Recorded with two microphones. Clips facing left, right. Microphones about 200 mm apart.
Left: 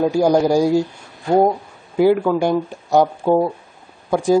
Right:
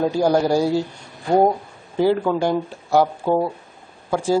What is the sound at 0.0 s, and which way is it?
Speech, 10° left (ahead or behind).